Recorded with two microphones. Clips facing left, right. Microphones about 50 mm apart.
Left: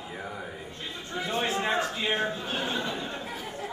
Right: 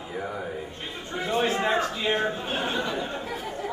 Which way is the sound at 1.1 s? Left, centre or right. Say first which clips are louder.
Right 4 dB; right.